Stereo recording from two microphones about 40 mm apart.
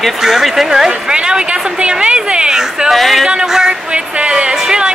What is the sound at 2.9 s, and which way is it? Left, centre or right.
Speech, centre.